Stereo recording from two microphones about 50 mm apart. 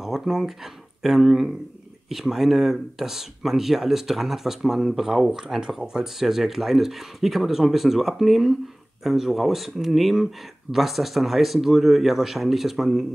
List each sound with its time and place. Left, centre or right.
0.0 s speech: centre